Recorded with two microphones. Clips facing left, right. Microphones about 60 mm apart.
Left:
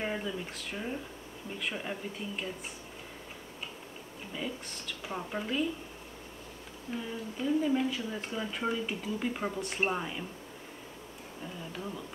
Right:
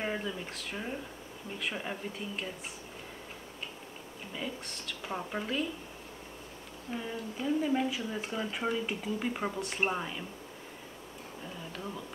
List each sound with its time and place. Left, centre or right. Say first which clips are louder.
0.0 s speech: even; centre
4.3 s speech: left 1 dB; centre
6.9 s speech: even; centre